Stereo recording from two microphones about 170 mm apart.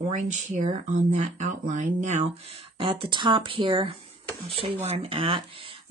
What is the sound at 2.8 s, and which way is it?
Speech, 30° right (ahead or behind).